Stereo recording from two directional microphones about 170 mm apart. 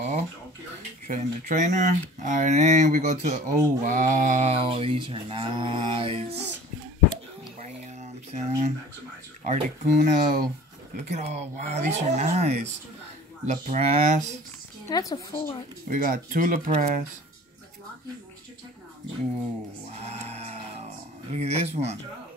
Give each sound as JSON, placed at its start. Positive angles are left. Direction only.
{"t": 1.0, "sound": "speech", "side_deg": -50}
{"t": 7.6, "sound": "a sound", "side_deg": -40}
{"t": 9.4, "sound": "speech", "side_deg": -45}
{"t": 11.1, "sound": "speech", "side_deg": -40}
{"t": 14.9, "sound": "a woman's voice", "side_deg": 20}
{"t": 15.9, "sound": "speech", "side_deg": -55}
{"t": 19.9, "sound": "music", "side_deg": -40}
{"t": 21.3, "sound": "speech", "side_deg": -40}